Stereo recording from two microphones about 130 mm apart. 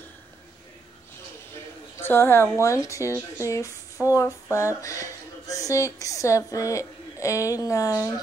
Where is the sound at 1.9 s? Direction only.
20° left (ahead or behind).